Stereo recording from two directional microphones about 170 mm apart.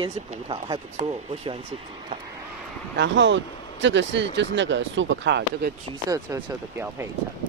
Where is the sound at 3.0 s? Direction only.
90° right.